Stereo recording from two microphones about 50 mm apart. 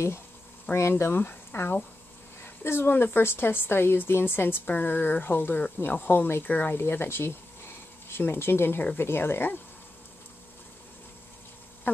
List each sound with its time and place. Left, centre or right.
0.7 s speech: left
1.1 s speech: left
2.4 s speech: left